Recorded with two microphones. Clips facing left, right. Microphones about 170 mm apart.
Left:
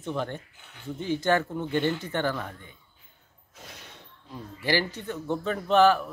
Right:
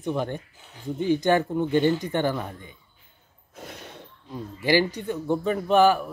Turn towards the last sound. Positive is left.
turn(degrees=-10)  # may be behind; listen again after turning